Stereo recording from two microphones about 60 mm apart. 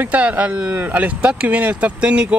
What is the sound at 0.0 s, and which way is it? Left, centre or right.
Speech, right.